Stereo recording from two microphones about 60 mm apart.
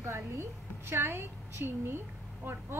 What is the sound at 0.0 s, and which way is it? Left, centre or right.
A woman's voice, right.